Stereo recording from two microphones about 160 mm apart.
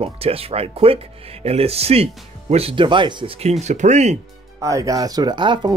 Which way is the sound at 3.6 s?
45° right (ahead or behind).